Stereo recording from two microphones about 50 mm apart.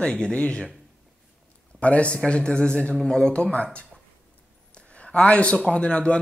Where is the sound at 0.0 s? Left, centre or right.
Centre.